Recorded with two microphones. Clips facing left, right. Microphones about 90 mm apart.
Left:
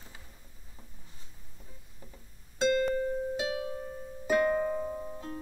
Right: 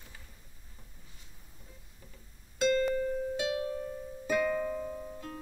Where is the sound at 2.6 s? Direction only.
30° left (ahead or behind).